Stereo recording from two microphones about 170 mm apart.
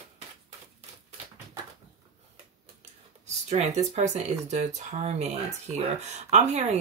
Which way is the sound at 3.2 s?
40° right (ahead or behind).